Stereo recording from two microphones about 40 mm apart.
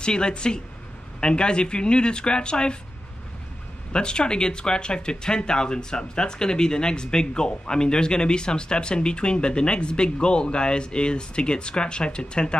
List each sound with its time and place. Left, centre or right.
0.0 s speech: left
3.9 s speech: left